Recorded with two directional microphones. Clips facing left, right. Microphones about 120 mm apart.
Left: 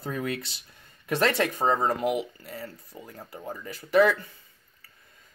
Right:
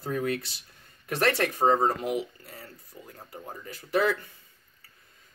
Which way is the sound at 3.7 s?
80° left.